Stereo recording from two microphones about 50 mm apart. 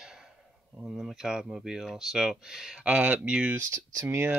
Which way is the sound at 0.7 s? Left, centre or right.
Centre.